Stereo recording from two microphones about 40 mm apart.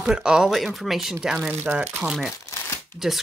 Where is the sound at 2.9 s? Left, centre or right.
Left.